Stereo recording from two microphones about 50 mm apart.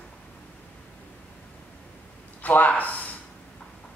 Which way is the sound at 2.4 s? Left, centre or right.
Left.